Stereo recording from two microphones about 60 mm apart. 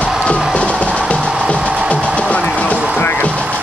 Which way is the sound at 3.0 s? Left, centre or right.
Left.